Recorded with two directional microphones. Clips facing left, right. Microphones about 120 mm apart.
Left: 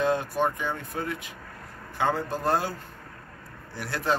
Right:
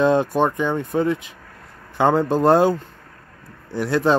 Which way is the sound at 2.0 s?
75° right (ahead or behind).